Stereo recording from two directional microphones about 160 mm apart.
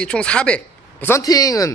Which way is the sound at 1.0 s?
20° left (ahead or behind).